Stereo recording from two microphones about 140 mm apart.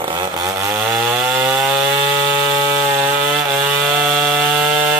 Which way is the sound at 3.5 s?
5° right (ahead or behind).